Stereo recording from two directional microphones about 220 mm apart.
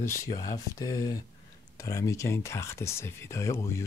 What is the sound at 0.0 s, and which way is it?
Speech, 10° left (ahead or behind).